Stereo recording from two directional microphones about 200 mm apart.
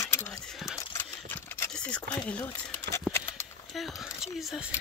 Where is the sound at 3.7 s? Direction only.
Centre (ahead or behind).